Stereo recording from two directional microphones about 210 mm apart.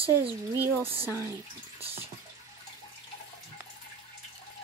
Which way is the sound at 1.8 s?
25° right (ahead or behind).